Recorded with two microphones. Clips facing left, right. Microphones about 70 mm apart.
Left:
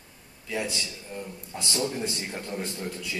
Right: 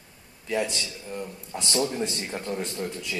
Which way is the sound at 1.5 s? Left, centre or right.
Centre.